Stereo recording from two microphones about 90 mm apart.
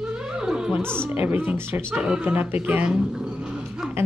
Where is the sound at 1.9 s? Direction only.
10° right (ahead or behind).